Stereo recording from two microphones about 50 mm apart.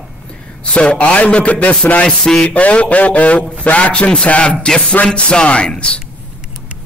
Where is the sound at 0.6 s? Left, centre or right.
Left.